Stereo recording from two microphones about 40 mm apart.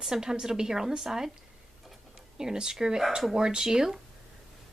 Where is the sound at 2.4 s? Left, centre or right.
Centre.